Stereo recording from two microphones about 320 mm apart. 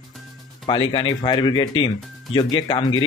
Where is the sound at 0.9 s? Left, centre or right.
Centre.